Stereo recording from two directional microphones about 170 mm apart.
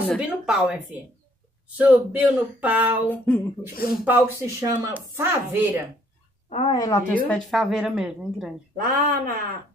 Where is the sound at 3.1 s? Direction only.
5° left (ahead or behind).